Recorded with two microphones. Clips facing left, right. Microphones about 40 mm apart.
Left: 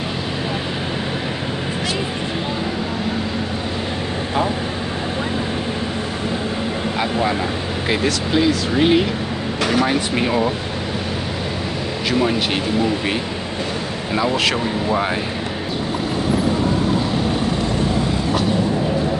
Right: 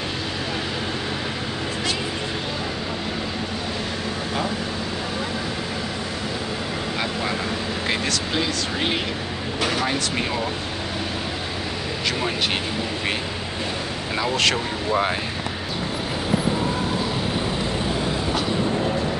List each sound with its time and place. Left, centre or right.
7.9 s speech: centre
9.8 s speech: left
12.1 s speech: centre
14.1 s speech: centre